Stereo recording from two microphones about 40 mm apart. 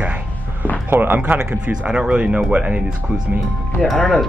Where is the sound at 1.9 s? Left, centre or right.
Right.